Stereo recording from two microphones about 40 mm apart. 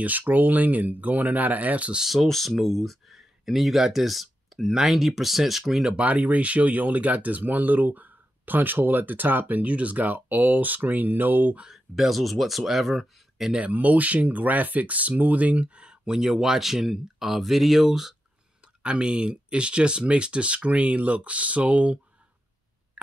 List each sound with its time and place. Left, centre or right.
0.0 s speech: right
2.1 s speech: centre
5.9 s speech: right
11.9 s speech: centre
13.6 s speech: right
16.2 s speech: centre
18.8 s speech: right